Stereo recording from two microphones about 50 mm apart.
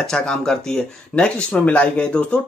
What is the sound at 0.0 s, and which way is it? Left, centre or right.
Speech, centre.